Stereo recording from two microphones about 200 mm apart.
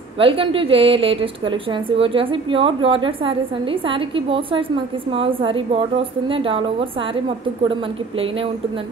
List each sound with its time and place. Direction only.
0.2 s a woman's voice: 25° right (ahead or behind)